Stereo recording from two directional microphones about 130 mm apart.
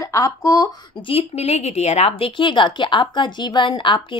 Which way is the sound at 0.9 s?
45° left (ahead or behind).